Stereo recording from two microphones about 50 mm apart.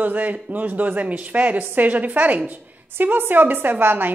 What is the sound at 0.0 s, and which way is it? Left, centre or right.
A woman's voice, right.